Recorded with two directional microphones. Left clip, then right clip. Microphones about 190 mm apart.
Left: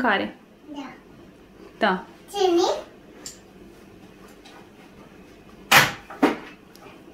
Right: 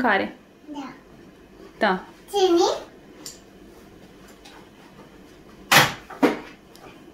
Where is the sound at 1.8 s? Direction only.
Centre (ahead or behind).